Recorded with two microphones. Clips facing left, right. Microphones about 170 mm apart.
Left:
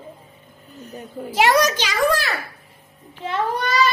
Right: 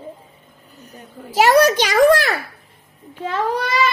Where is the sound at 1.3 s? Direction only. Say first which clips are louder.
Right 3 dB; 40° right (ahead or behind).